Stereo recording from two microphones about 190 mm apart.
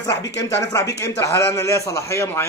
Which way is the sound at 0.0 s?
15° left (ahead or behind).